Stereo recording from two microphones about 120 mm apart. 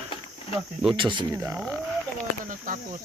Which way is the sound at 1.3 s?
20° right (ahead or behind).